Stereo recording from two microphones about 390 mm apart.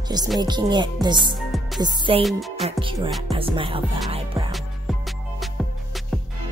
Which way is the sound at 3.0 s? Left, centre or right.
Centre.